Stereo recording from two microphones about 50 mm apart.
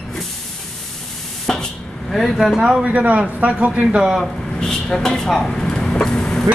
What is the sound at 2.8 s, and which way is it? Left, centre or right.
Speech, right.